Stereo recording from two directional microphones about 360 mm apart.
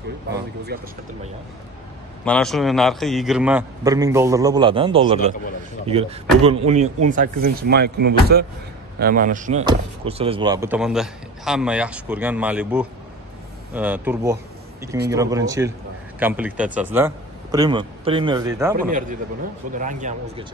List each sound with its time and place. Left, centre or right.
0.7 s speech: right
2.2 s a man's voice: centre
18.8 s speech: right